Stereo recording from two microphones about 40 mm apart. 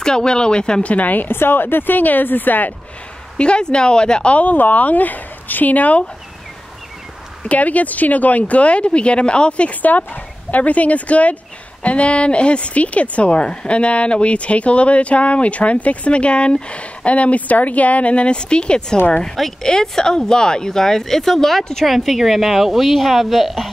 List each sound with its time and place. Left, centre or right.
0.0 s speech: centre
0.8 s speech: left
1.3 s a woman's voice: left
3.3 s speech: left
4.3 s speech: left
7.4 s a woman's voice: left
9.8 s a woman's voice: left; by 21.8 s centre
21.8 s a woman's voice: centre